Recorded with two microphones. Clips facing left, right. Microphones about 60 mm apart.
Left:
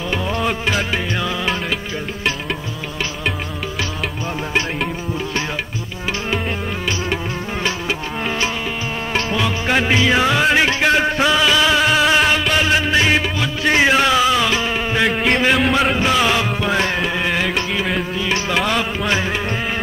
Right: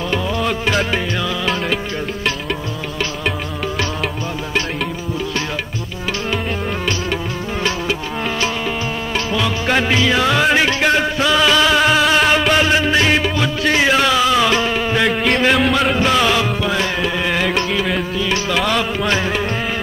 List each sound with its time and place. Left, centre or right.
0.4 s music: centre
9.7 s music: centre
10.4 s music: centre
11.1 s music: left
11.3 s music: centre
14.3 s music: centre
16.7 s music: left
17.0 s music: centre